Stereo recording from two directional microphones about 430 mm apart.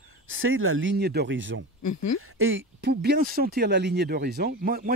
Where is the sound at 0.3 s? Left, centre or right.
Right.